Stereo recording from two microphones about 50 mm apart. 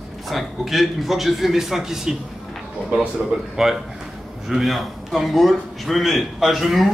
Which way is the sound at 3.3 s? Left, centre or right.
Centre.